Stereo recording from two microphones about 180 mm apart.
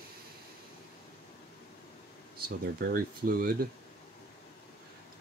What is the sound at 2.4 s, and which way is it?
Speech, 55° right (ahead or behind).